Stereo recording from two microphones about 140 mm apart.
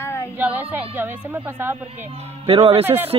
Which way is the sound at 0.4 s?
15° right (ahead or behind).